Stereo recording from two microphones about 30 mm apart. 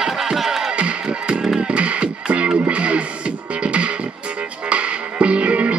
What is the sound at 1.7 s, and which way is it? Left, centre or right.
Music, right.